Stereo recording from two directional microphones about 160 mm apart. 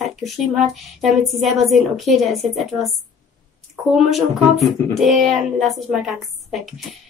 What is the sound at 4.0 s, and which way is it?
Speech, centre (ahead or behind).